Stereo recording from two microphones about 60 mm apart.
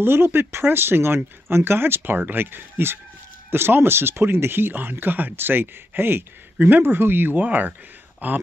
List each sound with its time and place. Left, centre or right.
0.0 s speech: right